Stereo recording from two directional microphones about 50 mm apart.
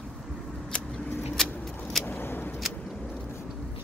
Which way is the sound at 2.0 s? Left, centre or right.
Left.